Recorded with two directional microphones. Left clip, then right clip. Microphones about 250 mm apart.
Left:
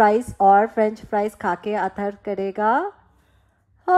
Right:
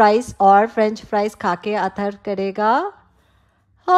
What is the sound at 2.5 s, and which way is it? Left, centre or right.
Speech, left.